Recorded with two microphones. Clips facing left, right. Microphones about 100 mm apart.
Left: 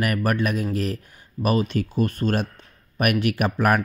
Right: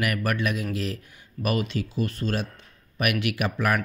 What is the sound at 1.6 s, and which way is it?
Speech, 50° left (ahead or behind).